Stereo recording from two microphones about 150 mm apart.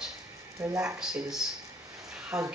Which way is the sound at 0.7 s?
5° right (ahead or behind).